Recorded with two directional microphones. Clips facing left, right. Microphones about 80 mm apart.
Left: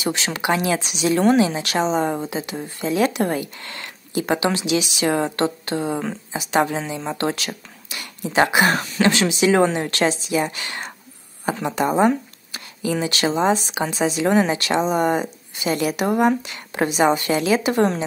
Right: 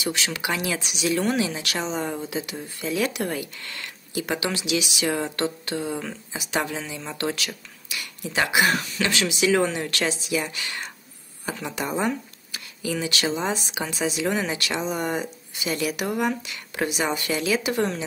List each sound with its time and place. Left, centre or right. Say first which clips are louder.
0.0 s speech: left 4 dB; left